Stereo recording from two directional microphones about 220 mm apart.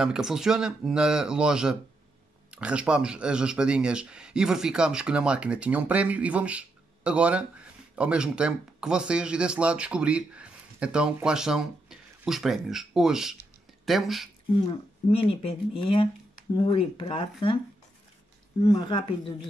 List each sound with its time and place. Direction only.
0.0 s speech: 5° right (ahead or behind)
14.5 s speech: 25° left (ahead or behind)
18.6 s speech: 15° left (ahead or behind)